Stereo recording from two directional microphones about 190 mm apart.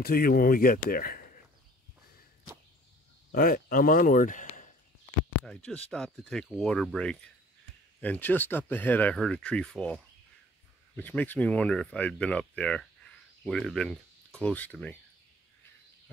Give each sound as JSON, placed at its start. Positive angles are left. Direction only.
{"t": 0.0, "sound": "speech", "side_deg": 50}
{"t": 3.3, "sound": "speech", "side_deg": 50}
{"t": 5.4, "sound": "speech", "side_deg": 5}